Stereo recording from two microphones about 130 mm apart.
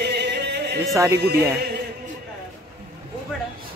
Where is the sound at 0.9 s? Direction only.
25° right (ahead or behind).